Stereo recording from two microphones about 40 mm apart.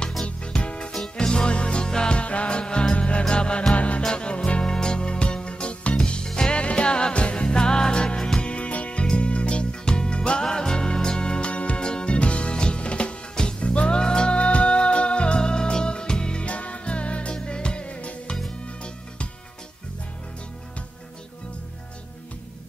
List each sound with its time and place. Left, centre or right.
0.5 s music: left
6.5 s music: left
8.5 s music: left